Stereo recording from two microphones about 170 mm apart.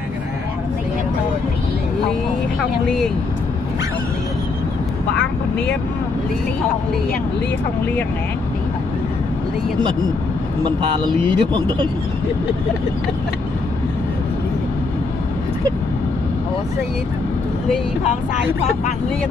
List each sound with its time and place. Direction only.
10.6 s speech: 30° right (ahead or behind)